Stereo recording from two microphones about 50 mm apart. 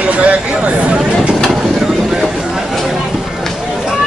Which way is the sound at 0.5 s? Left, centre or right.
Centre.